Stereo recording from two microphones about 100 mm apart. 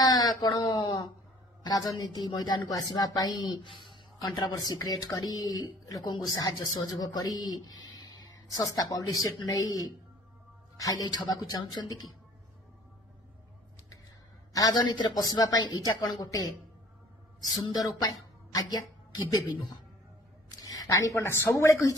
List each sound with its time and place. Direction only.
0.0 s a sound: 40° left (ahead or behind)
2.0 s a woman's voice: 45° left (ahead or behind)
14.5 s a woman's voice: 40° left (ahead or behind)